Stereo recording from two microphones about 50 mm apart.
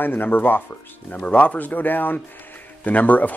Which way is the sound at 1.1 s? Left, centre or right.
Left.